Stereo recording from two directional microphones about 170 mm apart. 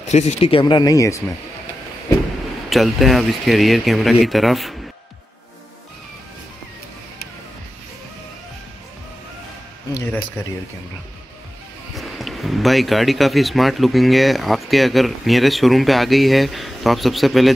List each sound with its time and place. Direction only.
0.1 s speech: 40° left (ahead or behind); by 1.2 s 20° left (ahead or behind)
2.7 s speech: centre (ahead or behind)
11.9 s speech: centre (ahead or behind)